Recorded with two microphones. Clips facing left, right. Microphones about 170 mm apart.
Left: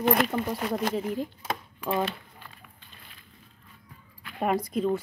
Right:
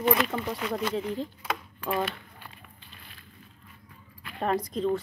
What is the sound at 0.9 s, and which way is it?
Speech, 10° left (ahead or behind).